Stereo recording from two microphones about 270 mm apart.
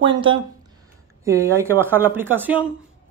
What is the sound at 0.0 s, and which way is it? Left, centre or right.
Speech, centre.